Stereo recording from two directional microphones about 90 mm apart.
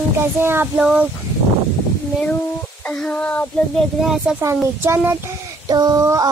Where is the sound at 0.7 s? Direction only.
10° right (ahead or behind).